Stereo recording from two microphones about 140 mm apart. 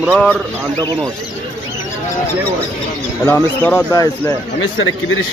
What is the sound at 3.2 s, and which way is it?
Speech, 15° left (ahead or behind).